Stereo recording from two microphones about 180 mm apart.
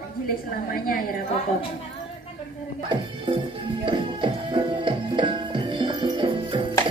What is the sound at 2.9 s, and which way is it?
Music, 30° right (ahead or behind).